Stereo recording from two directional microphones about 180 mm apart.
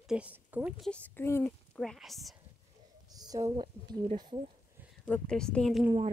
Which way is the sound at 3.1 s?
20° right (ahead or behind).